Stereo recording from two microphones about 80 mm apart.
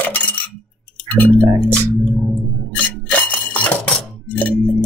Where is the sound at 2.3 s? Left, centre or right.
Centre.